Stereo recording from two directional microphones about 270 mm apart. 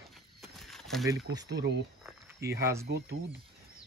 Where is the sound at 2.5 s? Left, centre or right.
Centre.